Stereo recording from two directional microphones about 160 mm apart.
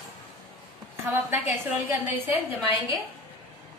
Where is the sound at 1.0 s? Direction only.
10° right (ahead or behind).